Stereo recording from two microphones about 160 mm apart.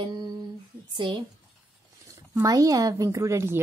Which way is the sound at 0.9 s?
30° right (ahead or behind).